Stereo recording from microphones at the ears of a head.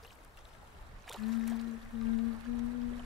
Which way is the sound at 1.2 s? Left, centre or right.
Left.